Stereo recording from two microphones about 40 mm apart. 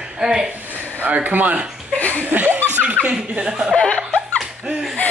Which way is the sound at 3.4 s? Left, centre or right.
Centre.